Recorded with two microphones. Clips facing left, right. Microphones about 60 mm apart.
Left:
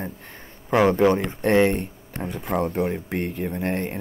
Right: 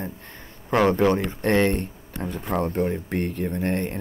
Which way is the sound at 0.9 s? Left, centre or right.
Left.